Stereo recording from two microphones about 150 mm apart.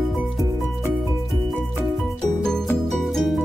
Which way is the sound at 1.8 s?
Centre (ahead or behind).